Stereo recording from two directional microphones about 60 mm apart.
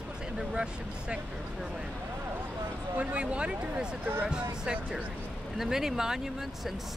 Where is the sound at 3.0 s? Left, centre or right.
Right.